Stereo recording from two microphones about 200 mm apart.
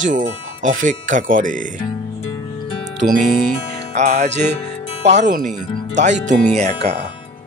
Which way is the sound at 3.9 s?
35° right (ahead or behind).